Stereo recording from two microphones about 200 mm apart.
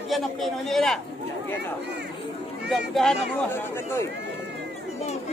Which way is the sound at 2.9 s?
Centre (ahead or behind).